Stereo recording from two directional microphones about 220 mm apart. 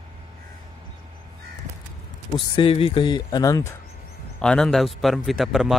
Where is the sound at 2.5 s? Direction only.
25° left (ahead or behind).